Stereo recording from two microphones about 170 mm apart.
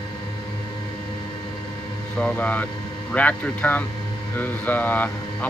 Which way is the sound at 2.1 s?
10° left (ahead or behind).